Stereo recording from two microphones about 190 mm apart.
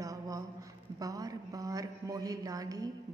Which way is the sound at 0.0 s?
15° right (ahead or behind).